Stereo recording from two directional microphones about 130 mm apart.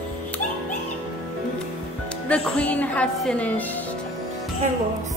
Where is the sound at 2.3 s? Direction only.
10° left (ahead or behind).